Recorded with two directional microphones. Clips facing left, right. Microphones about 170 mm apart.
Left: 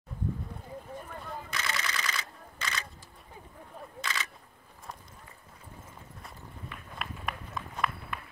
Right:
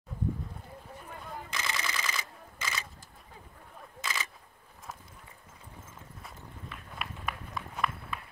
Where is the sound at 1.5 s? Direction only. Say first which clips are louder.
Even; 20° right (ahead or behind).